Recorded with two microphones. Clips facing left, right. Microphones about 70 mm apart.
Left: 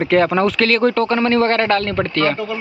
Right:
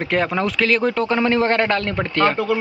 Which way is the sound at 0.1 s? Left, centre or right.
Centre.